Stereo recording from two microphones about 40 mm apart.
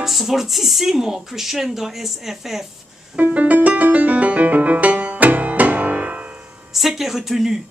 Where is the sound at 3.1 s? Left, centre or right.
Right.